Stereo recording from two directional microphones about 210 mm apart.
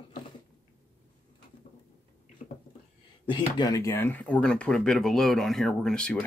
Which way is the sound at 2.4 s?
30° left (ahead or behind).